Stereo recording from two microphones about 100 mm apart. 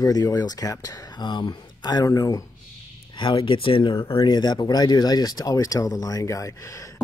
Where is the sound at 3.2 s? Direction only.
60° left (ahead or behind).